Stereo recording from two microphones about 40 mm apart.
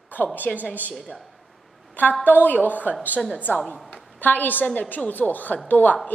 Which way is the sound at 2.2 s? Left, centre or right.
Left.